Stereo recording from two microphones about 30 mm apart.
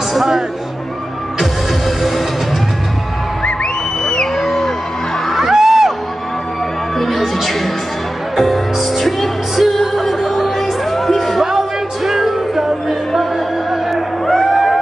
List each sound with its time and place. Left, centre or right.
0.1 s music: centre
4.0 s music: left
4.4 s a sound: centre
5.5 s music: centre
7.0 s music: centre